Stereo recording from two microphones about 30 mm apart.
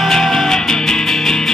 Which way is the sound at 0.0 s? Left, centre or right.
Centre.